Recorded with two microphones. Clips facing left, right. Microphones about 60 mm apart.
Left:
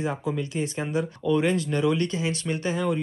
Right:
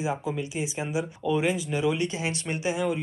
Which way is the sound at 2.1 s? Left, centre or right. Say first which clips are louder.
Left 3 dB; right.